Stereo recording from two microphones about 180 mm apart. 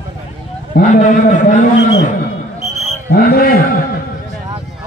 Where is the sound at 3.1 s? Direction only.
55° left (ahead or behind).